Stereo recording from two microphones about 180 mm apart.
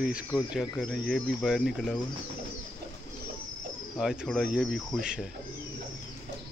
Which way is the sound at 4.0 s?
Centre (ahead or behind).